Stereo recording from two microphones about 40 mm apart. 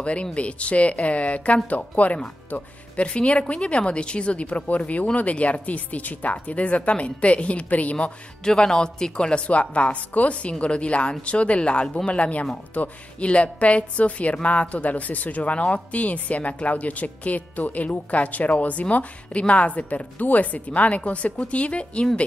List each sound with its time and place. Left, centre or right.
0.0 s a woman's voice: left
8.5 s a woman's voice: centre; by 22.0 s left